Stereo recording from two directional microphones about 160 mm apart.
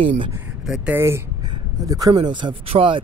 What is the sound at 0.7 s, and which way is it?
Speech, 10° right (ahead or behind).